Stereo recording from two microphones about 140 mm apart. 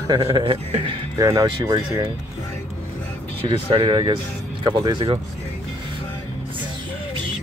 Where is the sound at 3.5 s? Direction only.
40° right (ahead or behind).